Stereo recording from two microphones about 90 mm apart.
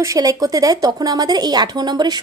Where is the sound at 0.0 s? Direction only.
40° right (ahead or behind).